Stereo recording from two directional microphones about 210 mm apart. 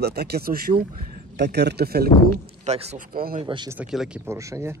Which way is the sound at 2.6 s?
30° right (ahead or behind).